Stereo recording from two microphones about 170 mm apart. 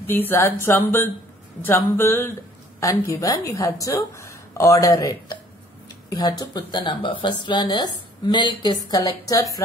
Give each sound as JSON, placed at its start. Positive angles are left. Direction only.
{"t": 0.0, "sound": "speech", "side_deg": 10}